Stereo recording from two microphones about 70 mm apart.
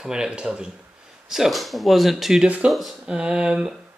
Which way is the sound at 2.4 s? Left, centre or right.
Centre.